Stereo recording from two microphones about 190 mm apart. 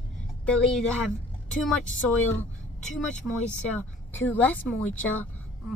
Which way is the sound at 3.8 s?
10° left (ahead or behind).